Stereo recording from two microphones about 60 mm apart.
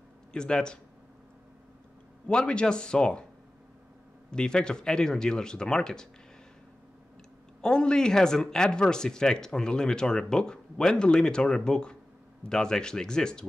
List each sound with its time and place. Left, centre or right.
0.3 s speech: centre
2.2 s speech: centre
4.3 s speech: centre
7.6 s speech: centre